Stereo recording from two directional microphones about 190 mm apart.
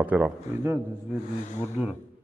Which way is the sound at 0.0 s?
10° right (ahead or behind).